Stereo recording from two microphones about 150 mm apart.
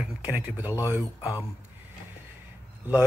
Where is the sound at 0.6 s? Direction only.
25° left (ahead or behind).